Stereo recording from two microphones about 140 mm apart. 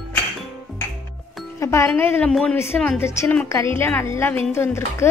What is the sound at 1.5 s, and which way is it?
A woman's voice, 20° left (ahead or behind).